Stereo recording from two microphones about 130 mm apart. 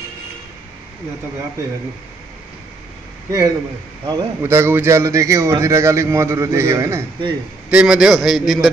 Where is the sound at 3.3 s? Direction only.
25° right (ahead or behind).